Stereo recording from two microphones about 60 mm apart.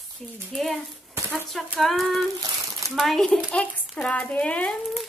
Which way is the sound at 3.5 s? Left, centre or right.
Left.